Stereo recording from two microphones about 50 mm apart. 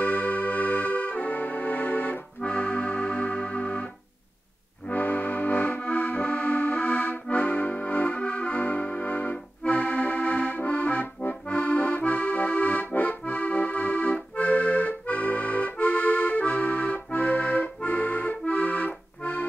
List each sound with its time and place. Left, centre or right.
0.0 s music: left
2.4 s accordion: left
4.8 s music: left
9.6 s accordion: left